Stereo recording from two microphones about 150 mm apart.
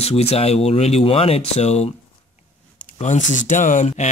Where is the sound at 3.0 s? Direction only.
55° left (ahead or behind).